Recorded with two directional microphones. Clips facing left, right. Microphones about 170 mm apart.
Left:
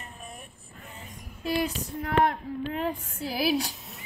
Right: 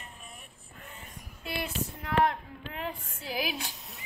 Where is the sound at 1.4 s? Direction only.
40° left (ahead or behind).